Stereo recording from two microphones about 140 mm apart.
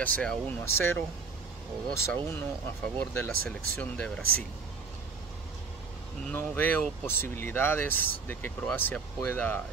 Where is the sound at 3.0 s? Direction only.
10° left (ahead or behind).